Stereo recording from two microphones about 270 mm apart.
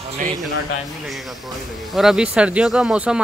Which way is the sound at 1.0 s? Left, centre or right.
Centre.